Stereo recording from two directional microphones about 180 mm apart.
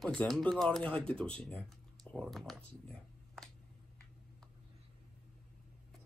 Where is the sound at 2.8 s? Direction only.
Centre (ahead or behind).